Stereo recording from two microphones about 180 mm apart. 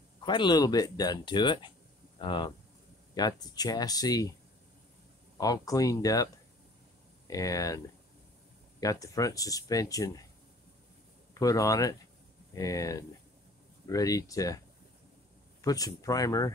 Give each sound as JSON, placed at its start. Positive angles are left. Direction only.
{"t": 0.2, "sound": "speech", "side_deg": 25}
{"t": 5.4, "sound": "speech", "side_deg": 20}
{"t": 7.2, "sound": "speech", "side_deg": 20}
{"t": 11.3, "sound": "speech", "side_deg": 20}
{"t": 15.6, "sound": "speech", "side_deg": 20}